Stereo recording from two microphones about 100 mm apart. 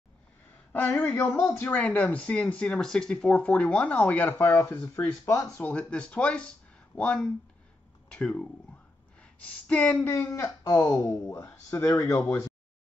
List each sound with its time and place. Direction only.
0.7 s speech: 20° left (ahead or behind)
10.0 s speech: 30° left (ahead or behind)
12.0 s speech: 15° left (ahead or behind)